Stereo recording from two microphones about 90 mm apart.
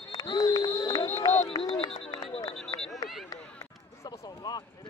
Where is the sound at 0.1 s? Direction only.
45° left (ahead or behind).